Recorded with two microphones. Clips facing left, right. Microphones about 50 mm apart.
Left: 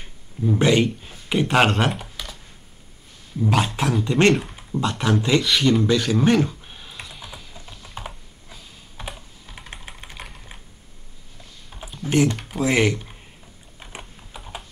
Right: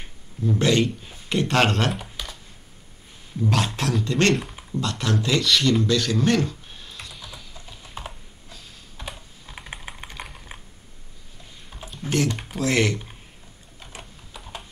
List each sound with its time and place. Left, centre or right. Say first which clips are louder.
0.4 s speech: left 2 dB; centre
1.9 s typing: left 1 dB; centre
3.3 s speech: left 3 dB; centre
7.9 s typing: left 1 dB; centre
9.5 s typing: right 2 dB; centre
10.0 s typing: even; centre
11.7 s typing: left 1 dB; centre
12.1 s speech: left 4 dB; centre
13.7 s typing: left 2 dB; centre